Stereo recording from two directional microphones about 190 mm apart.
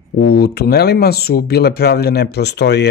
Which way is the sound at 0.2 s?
55° left (ahead or behind).